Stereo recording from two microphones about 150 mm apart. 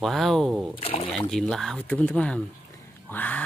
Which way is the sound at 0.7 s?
40° left (ahead or behind).